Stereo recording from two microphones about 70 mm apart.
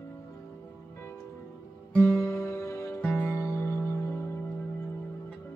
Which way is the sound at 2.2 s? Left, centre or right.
Left.